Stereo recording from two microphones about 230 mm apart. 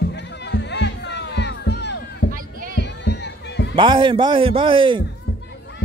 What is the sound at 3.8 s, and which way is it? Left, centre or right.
Speech, right.